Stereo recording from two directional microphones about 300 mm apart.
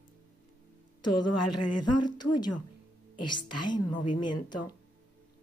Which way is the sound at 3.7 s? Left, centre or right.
Centre.